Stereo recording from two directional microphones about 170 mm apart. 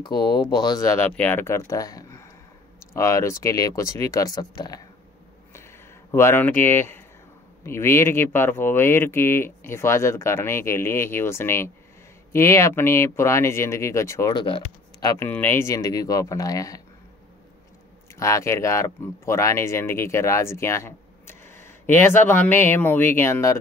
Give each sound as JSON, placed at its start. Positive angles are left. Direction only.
{"t": 0.0, "sound": "speech", "side_deg": 25}
{"t": 6.1, "sound": "speech", "side_deg": 15}
{"t": 18.2, "sound": "speech", "side_deg": 15}